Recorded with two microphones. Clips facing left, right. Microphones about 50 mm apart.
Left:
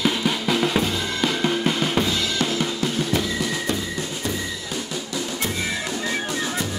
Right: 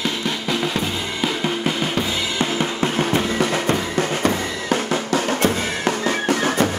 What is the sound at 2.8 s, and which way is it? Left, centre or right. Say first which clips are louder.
Music: right 4 dB; right.